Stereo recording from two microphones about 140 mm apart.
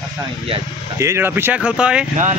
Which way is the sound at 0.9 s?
20° right (ahead or behind).